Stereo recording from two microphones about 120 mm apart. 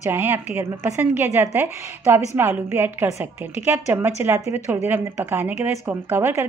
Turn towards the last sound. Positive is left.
turn(degrees=-20)  # may be behind; listen again after turning